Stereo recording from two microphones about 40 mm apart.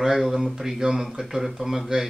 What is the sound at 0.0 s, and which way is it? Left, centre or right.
Speech, centre.